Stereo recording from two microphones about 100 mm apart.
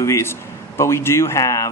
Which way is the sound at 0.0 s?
25° left (ahead or behind).